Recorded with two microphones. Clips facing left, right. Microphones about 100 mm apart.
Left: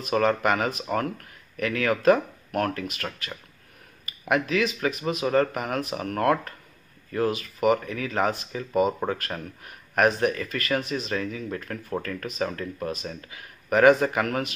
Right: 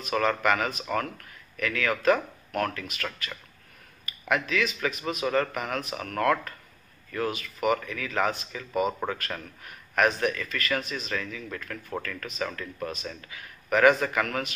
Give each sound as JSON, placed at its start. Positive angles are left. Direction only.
{"t": 0.0, "sound": "speech", "side_deg": 35}